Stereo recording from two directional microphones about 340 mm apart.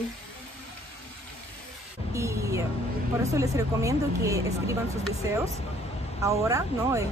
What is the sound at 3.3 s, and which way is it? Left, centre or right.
Speech, centre.